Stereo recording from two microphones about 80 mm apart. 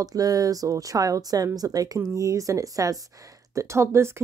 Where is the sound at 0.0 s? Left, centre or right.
Right.